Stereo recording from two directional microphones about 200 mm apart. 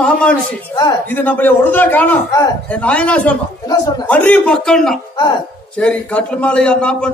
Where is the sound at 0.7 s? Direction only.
20° left (ahead or behind).